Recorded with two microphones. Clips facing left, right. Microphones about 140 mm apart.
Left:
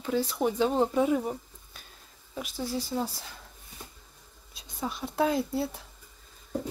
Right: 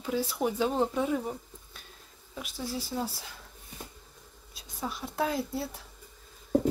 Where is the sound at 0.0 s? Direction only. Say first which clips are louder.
Left 2 dB; 5° right (ahead or behind).